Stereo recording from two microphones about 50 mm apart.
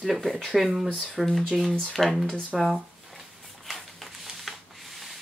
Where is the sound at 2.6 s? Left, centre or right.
Centre.